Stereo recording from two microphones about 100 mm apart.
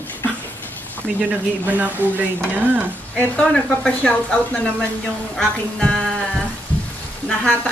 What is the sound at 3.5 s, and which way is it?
Speech, 5° left (ahead or behind).